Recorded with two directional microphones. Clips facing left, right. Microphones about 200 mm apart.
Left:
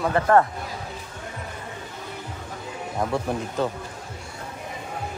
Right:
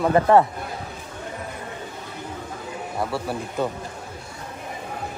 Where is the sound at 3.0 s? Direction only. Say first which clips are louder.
Left 2 dB; 5° right (ahead or behind).